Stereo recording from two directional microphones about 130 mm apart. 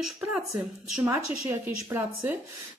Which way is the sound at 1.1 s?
20° right (ahead or behind).